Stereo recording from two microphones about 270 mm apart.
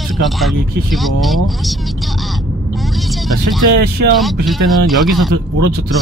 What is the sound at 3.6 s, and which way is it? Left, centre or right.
Speech, right.